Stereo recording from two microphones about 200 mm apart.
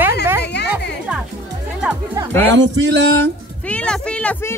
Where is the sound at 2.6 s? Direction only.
60° right (ahead or behind).